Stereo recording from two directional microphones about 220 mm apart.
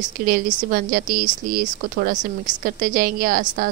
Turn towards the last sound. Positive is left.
turn(degrees=-40)  # may be behind; listen again after turning